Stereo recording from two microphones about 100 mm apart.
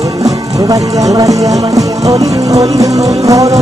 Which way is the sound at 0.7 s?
35° right (ahead or behind).